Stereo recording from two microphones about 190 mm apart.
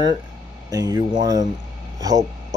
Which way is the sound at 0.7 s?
20° right (ahead or behind).